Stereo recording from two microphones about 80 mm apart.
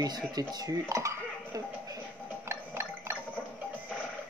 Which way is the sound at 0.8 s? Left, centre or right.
Right.